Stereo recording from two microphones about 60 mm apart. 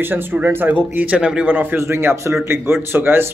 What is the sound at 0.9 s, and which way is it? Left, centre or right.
Speech, right.